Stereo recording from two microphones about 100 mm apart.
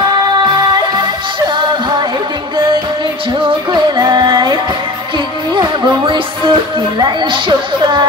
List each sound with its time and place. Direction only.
4.0 s music: 45° right (ahead or behind)
7.0 s a woman's voice: 50° right (ahead or behind)